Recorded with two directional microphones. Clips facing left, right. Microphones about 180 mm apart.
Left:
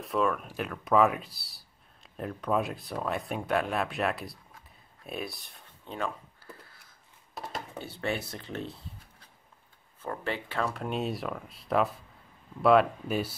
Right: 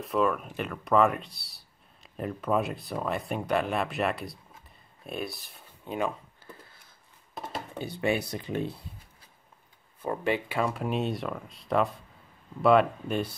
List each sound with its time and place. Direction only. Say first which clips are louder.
0.0 s speech: right 2 dB; centre (ahead or behind)
5.9 s a sound: right 4 dB; 20° right (ahead or behind)
7.8 s speech: right 6 dB; 15° right (ahead or behind)
10.0 s speech: right 6 dB; 15° right (ahead or behind); by 13.4 s 5° left (ahead or behind)